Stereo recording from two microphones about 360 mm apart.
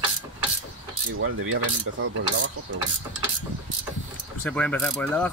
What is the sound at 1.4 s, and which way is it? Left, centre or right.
Cutlery, right.